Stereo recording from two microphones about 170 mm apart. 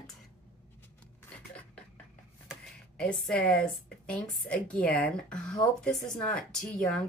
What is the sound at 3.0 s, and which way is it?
A woman's voice, 5° left (ahead or behind).